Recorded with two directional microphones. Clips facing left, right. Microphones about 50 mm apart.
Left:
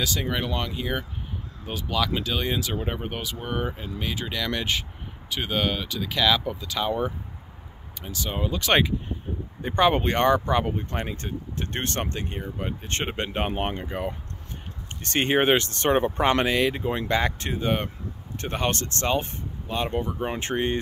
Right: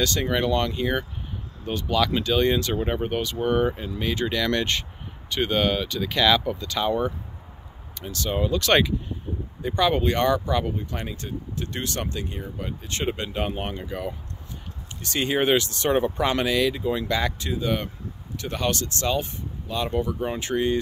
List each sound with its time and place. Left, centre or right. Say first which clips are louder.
0.0 s speech: right 4 dB; centre
9.6 s speech: left 1 dB; left